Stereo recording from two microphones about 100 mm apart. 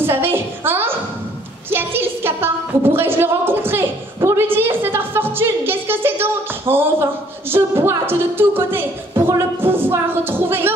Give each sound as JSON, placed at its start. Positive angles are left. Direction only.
{"t": 0.0, "sound": "a woman's voice", "side_deg": -25}
{"t": 1.7, "sound": "a sound", "side_deg": -25}
{"t": 7.5, "sound": "a woman's voice", "side_deg": -25}